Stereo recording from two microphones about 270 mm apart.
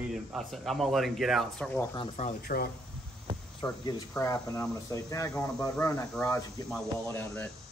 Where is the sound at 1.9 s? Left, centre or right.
Left.